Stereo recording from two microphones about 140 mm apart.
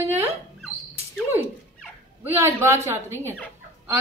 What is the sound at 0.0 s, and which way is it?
Wail, 20° right (ahead or behind).